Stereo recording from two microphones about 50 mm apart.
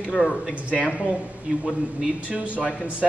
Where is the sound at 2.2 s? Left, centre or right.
Right.